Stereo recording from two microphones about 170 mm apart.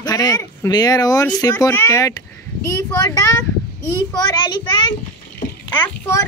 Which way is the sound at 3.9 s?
25° left (ahead or behind).